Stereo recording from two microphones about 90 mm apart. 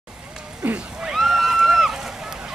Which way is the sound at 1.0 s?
5° right (ahead or behind).